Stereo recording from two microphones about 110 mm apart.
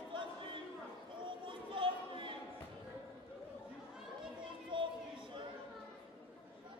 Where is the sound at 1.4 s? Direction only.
50° right (ahead or behind).